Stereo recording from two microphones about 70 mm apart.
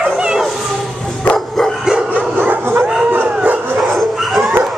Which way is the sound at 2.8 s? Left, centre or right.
Centre.